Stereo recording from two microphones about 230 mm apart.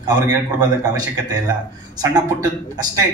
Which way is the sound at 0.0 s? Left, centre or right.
Centre.